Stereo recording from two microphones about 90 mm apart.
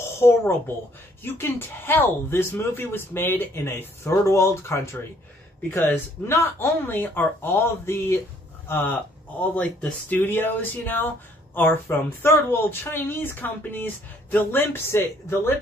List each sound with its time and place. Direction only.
0.0 s a sound: 30° left (ahead or behind)
1.2 s speech: 25° left (ahead or behind)
10.0 s speech: 25° left (ahead or behind)